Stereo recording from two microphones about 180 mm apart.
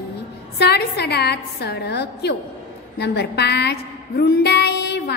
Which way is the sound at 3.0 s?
65° left (ahead or behind).